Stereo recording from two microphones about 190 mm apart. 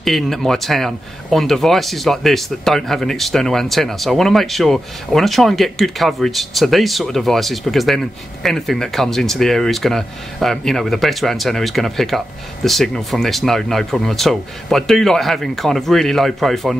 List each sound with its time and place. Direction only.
0.0 s speech: centre (ahead or behind)